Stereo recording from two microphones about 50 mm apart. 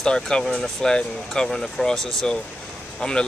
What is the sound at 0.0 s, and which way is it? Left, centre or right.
Speech, centre.